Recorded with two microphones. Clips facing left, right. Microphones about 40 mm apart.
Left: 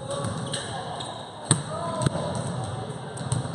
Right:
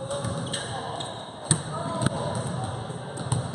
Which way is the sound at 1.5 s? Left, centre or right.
Left.